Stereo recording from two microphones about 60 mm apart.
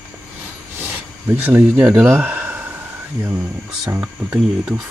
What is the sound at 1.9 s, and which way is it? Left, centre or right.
Speech, right.